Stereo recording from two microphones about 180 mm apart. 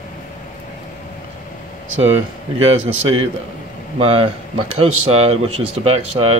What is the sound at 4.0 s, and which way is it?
Speech, 30° right (ahead or behind).